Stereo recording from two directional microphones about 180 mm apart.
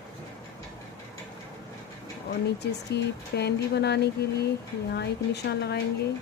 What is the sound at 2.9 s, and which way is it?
Speech, 70° left (ahead or behind).